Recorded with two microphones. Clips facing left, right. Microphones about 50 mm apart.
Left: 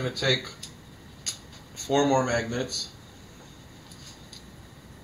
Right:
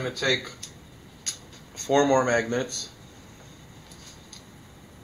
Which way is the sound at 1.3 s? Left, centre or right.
Centre.